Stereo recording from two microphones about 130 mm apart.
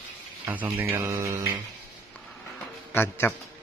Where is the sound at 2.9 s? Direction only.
15° left (ahead or behind).